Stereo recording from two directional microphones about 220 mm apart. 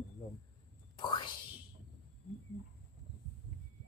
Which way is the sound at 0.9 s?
20° left (ahead or behind).